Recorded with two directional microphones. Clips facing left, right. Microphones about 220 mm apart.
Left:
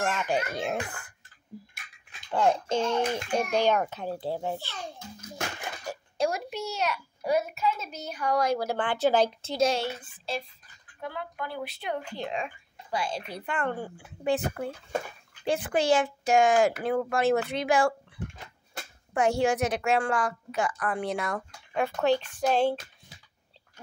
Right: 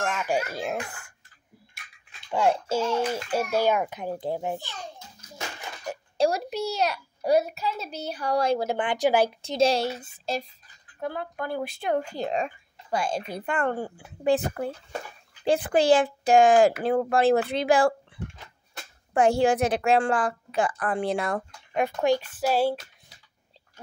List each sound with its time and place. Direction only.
0.0 s a child's voice: 5° right (ahead or behind)
2.3 s a child's voice: 10° right (ahead or behind)
6.1 s a child's voice: 35° right (ahead or behind); by 9.6 s 10° right (ahead or behind)
9.6 s a child's voice: 35° right (ahead or behind)
15.4 s a child's voice: 35° right (ahead or behind)
21.7 s a child's voice: 15° right (ahead or behind)